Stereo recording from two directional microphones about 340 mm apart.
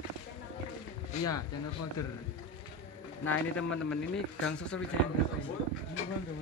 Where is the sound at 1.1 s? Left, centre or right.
Left.